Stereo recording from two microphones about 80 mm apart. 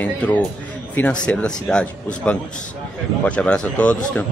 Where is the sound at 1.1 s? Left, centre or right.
Centre.